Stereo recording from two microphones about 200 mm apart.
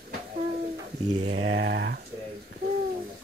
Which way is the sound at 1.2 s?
90° right.